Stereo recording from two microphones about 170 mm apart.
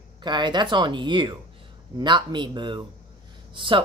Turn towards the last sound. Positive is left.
turn(degrees=-30)  # may be behind; listen again after turning